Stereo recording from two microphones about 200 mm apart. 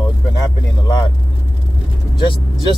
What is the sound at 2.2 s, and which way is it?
Speech, 25° left (ahead or behind).